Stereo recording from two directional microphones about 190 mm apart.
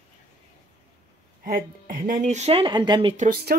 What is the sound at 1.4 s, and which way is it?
Speech, 45° right (ahead or behind).